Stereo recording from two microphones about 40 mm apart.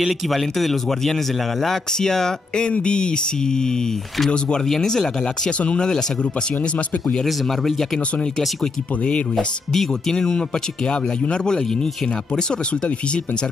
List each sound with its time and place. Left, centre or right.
0.3 s speech: centre
5.6 s speech: left
7.2 s speech: centre
9.7 s speech: centre
10.1 s speech: centre